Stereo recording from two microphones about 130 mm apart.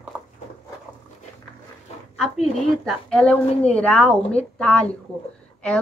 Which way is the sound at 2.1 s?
5° left (ahead or behind).